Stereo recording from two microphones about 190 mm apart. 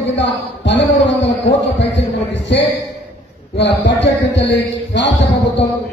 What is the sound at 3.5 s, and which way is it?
A man's voice, 70° left (ahead or behind).